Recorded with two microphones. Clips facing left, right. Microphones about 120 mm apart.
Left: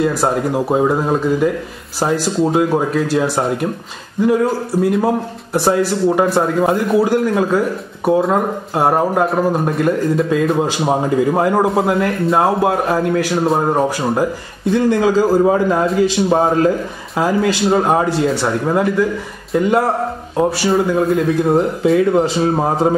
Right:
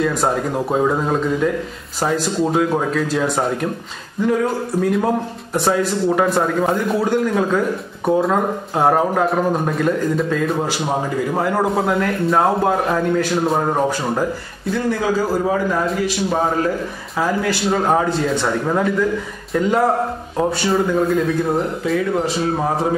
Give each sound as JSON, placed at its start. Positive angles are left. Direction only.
{"t": 0.0, "sound": "a man's voice", "side_deg": 5}
{"t": 10.5, "sound": "a man's voice", "side_deg": 20}
{"t": 11.7, "sound": "a man's voice", "side_deg": 5}
{"t": 14.7, "sound": "a man's voice", "side_deg": 20}
{"t": 21.5, "sound": "a man's voice", "side_deg": 30}